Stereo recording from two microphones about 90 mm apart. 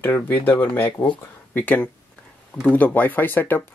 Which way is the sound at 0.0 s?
20° left (ahead or behind).